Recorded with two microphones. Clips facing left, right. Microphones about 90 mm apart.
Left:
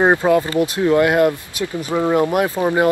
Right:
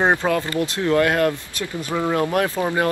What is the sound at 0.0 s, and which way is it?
Speech, 15° left (ahead or behind).